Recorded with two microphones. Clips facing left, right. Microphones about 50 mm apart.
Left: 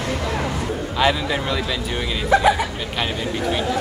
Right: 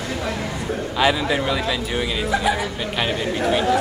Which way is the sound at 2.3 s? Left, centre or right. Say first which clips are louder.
Left 7 dB; left.